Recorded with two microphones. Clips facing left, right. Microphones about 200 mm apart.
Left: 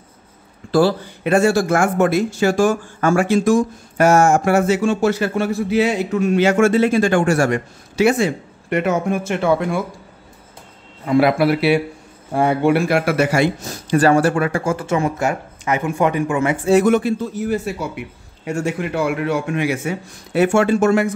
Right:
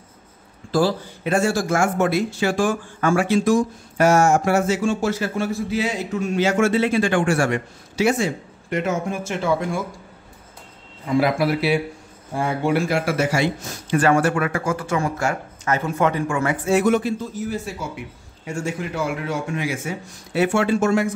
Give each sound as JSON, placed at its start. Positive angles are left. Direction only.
{"t": 0.7, "sound": "a man's voice", "side_deg": 65}
{"t": 7.9, "sound": "a man's voice", "side_deg": 65}
{"t": 11.1, "sound": "a man's voice", "side_deg": 65}
{"t": 13.8, "sound": "speech", "side_deg": 35}
{"t": 16.8, "sound": "a man's voice", "side_deg": 60}